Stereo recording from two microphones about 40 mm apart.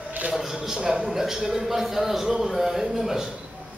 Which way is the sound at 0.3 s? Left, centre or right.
Centre.